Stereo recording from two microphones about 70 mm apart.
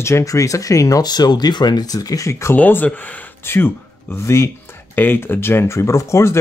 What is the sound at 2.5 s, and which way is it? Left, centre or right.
Speech, left.